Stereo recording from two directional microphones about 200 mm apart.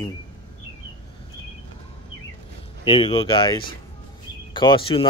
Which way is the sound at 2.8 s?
25° left (ahead or behind).